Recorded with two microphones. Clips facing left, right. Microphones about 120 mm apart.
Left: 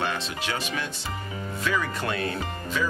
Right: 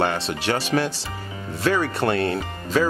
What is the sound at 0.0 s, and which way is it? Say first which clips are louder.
Speech: right 6 dB; 60° right (ahead or behind).